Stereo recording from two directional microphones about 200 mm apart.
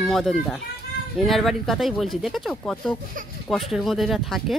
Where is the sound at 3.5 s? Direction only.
Centre (ahead or behind).